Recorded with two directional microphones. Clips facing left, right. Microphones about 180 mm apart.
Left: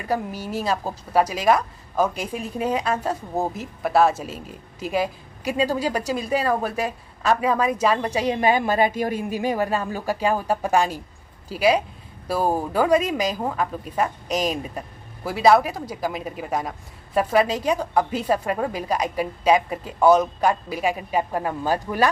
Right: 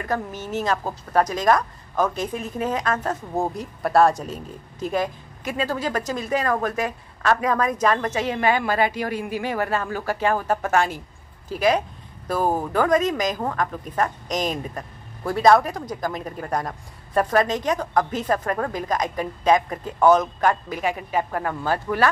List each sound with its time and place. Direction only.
0.0 s a woman's voice: 10° left (ahead or behind)
12.3 s a woman's voice: 10° left (ahead or behind)